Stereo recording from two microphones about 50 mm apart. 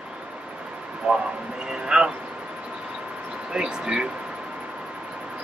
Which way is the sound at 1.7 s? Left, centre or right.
Centre.